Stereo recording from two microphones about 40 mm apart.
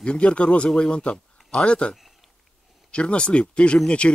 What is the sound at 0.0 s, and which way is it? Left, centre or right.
Speech, left.